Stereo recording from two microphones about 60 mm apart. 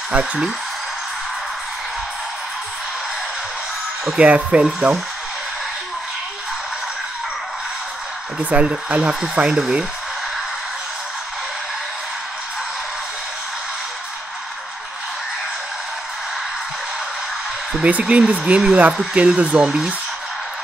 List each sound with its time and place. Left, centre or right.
0.1 s speech: centre
4.2 s speech: right
8.5 s speech: right
17.8 s speech: right